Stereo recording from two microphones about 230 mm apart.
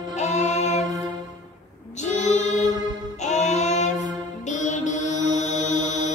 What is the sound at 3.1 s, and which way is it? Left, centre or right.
Music, left.